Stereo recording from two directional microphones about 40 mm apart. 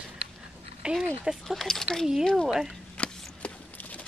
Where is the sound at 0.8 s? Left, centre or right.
Centre.